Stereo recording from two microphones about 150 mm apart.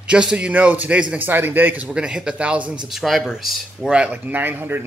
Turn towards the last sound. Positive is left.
turn(degrees=-15)  # may be behind; listen again after turning